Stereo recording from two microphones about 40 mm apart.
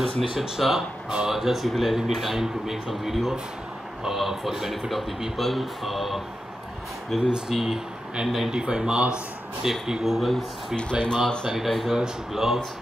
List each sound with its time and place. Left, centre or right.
0.2 s speech: centre
7.2 s speech: right
10.1 s speech: centre
11.0 s speech: centre
11.4 s speech: centre